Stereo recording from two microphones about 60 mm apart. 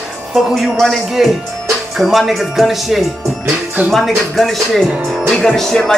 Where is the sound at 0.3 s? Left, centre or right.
Centre.